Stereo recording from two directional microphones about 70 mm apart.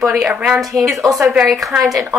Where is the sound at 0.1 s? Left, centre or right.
Centre.